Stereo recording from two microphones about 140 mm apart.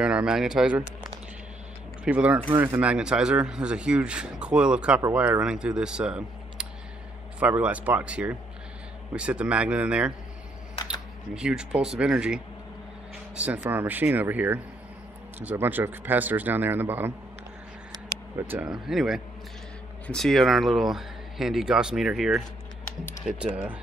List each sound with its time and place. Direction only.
0.0 s speech: 5° right (ahead or behind)
11.3 s speech: 5° right (ahead or behind)
13.6 s speech: 15° right (ahead or behind)
18.5 s speech: 10° right (ahead or behind)